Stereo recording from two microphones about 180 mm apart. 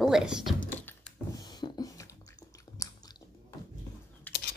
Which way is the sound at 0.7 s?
10° left (ahead or behind).